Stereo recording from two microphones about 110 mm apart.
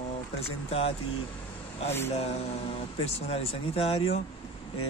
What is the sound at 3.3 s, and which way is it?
Speech, 65° left (ahead or behind).